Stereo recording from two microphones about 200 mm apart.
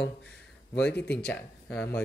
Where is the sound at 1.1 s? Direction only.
5° left (ahead or behind).